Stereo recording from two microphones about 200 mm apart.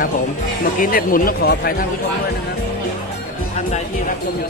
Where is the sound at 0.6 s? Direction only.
45° left (ahead or behind).